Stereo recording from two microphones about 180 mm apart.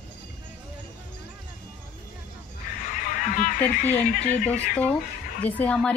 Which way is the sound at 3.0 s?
45° left (ahead or behind).